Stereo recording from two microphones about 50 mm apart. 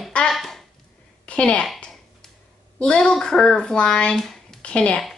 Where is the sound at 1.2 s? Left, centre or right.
Left.